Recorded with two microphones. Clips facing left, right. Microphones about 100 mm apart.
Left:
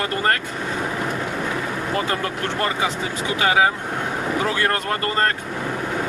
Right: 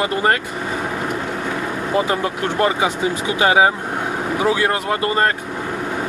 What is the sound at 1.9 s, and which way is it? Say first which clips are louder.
Speech: right 6 dB; 15° right (ahead or behind).